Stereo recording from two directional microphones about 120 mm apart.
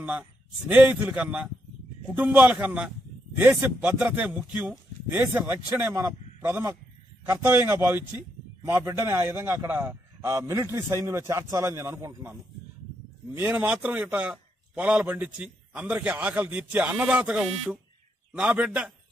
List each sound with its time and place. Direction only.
0.0 s a man's voice: 10° right (ahead or behind)
13.3 s a man's voice: 15° right (ahead or behind)